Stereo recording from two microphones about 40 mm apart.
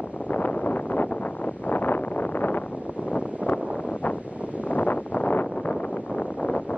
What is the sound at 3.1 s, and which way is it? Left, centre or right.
Wind noise, left.